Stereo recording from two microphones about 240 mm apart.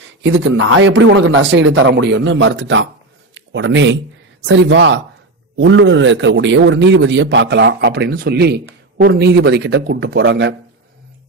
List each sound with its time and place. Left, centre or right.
0.2 s a man's voice: right